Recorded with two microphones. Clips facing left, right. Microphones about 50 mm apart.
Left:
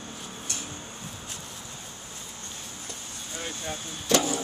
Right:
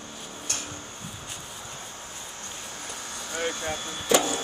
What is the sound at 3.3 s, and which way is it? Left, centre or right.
Vehicle, right.